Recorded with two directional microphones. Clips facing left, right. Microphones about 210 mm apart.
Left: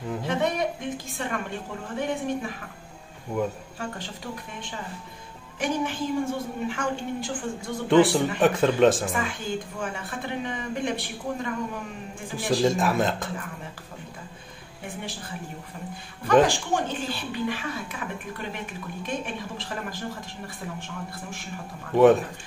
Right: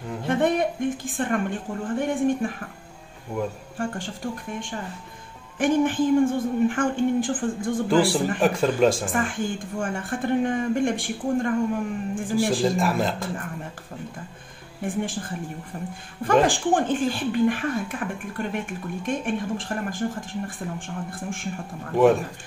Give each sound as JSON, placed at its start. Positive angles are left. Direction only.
{"t": 0.3, "sound": "a sound", "side_deg": -50}
{"t": 2.0, "sound": "speech", "side_deg": -50}
{"t": 3.3, "sound": "speech", "side_deg": -5}
{"t": 3.7, "sound": "speech", "side_deg": -50}
{"t": 7.9, "sound": "speech", "side_deg": 0}
{"t": 9.1, "sound": "speech", "side_deg": -50}
{"t": 12.4, "sound": "speech", "side_deg": 0}
{"t": 14.9, "sound": "speech", "side_deg": -50}
{"t": 16.4, "sound": "speech", "side_deg": -50}
{"t": 21.9, "sound": "speech", "side_deg": 0}